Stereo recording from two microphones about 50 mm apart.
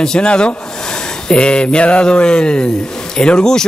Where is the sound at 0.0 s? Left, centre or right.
Centre.